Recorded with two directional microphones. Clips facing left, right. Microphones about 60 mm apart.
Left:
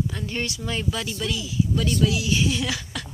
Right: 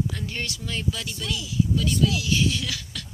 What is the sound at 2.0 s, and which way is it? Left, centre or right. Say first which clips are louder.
Music: left 1 dB; centre.